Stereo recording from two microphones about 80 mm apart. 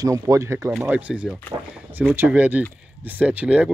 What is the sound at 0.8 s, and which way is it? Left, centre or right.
Speech, centre.